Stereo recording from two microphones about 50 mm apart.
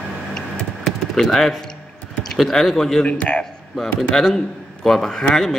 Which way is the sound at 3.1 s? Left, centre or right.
Left.